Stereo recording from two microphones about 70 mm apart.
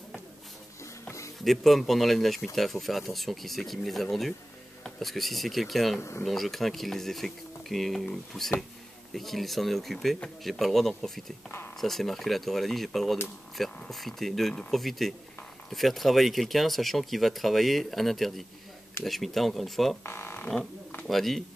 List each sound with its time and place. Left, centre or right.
1.4 s speech: centre
5.9 s speech: left
6.2 s speech: centre
20.0 s a sound: left
21.1 s speech: centre